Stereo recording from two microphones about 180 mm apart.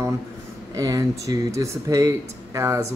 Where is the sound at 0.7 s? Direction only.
20° right (ahead or behind).